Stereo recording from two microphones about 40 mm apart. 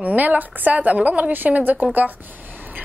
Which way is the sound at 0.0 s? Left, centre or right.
Right.